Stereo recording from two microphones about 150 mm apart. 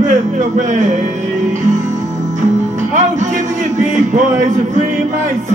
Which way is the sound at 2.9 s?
55° right (ahead or behind).